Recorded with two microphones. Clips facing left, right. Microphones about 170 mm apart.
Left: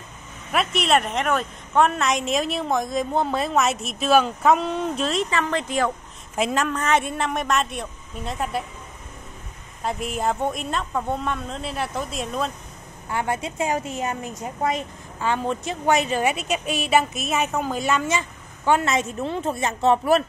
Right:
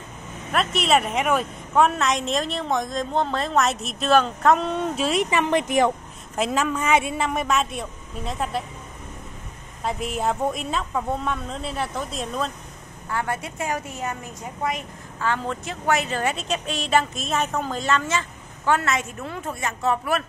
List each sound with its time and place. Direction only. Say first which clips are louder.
0.5 s a woman's voice: even; centre (ahead or behind); by 5.9 s 15° right (ahead or behind)
6.3 s a woman's voice: even; centre (ahead or behind)
9.8 s a woman's voice: even; centre (ahead or behind)
13.1 s a woman's voice: left 2 dB; 20° left (ahead or behind)